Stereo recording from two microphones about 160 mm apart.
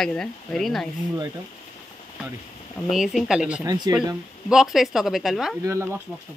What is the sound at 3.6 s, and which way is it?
Speech, 25° right (ahead or behind).